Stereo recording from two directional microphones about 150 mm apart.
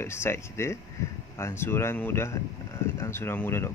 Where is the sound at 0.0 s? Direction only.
15° left (ahead or behind).